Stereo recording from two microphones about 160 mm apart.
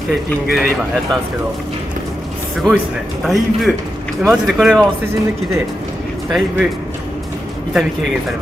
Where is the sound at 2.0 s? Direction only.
55° right (ahead or behind).